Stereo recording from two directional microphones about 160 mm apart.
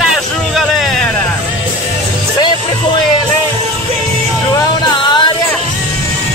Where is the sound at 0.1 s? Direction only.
Centre (ahead or behind).